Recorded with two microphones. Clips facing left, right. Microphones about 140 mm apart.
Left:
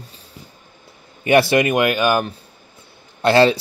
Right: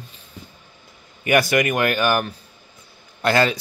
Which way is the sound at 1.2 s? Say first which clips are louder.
Left 4 dB; 30° left (ahead or behind).